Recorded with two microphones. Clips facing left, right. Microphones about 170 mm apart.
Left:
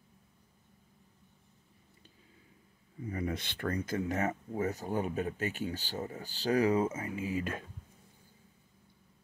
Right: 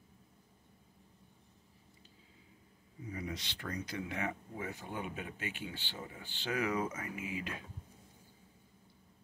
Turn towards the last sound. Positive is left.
turn(degrees=45)  # may be behind; listen again after turning